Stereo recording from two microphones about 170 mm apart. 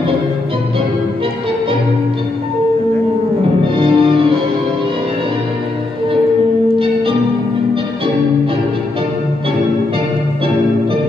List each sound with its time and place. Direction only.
3.6 s music: 35° right (ahead or behind)